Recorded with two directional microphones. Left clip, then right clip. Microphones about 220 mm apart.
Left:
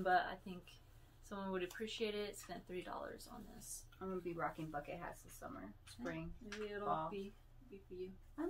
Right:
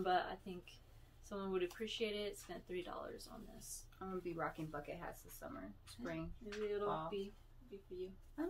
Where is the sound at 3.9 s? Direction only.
10° right (ahead or behind).